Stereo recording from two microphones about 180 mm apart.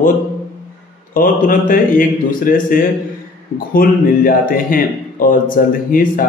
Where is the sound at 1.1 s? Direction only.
50° left (ahead or behind).